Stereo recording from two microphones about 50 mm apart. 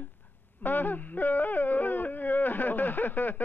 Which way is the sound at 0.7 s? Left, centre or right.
Left.